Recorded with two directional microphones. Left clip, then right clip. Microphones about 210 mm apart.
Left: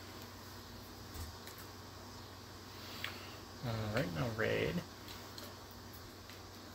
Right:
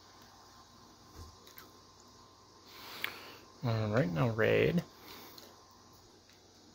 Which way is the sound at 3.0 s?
45° right (ahead or behind).